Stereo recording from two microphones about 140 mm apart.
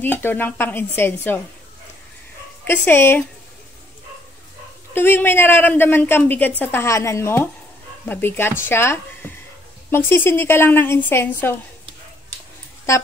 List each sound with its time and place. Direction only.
0.0 s a woman's voice: 15° left (ahead or behind)
2.6 s a woman's voice: 15° left (ahead or behind)
4.9 s a woman's voice: 15° left (ahead or behind)